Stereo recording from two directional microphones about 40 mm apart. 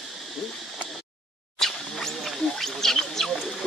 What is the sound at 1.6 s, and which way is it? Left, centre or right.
Wild animals, centre.